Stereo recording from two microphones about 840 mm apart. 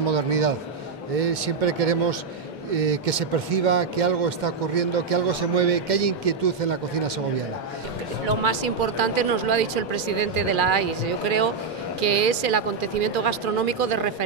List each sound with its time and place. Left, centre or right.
0.1 s a man's voice: right
8.3 s speech: right